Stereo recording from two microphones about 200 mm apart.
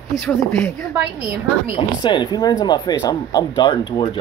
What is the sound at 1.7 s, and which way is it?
Speech, 25° left (ahead or behind).